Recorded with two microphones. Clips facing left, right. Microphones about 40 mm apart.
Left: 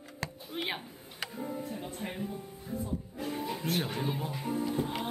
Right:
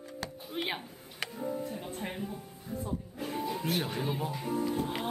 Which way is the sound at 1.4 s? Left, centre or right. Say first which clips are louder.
Right 2 dB; centre.